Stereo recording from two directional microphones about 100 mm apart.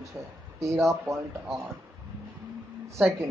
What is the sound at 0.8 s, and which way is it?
Speech, 30° right (ahead or behind).